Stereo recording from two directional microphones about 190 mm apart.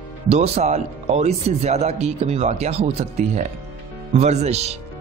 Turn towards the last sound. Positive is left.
turn(degrees=-35)  # may be behind; listen again after turning